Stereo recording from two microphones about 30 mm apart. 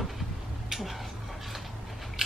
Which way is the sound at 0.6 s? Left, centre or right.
Centre.